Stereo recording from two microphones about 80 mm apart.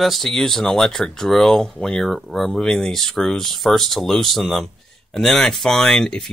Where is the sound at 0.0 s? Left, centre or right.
Centre.